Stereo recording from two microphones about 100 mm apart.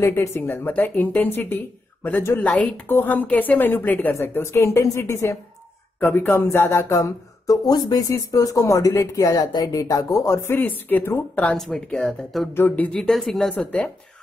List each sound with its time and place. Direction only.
0.0 s a woman's voice: 30° left (ahead or behind)
0.7 s a woman's voice: 15° left (ahead or behind)
11.6 s speech: 5° left (ahead or behind)
12.5 s a woman's voice: 20° left (ahead or behind)
12.9 s speech: 5° left (ahead or behind)